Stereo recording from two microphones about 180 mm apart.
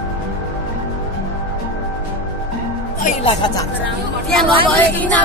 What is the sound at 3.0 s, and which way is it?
Speech, 30° left (ahead or behind).